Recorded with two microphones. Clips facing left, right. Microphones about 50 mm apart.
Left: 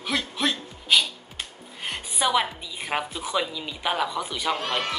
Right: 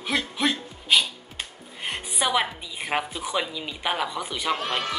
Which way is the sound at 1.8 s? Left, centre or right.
Centre.